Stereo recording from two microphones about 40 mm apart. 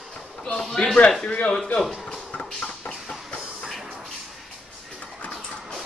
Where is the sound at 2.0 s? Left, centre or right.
Left.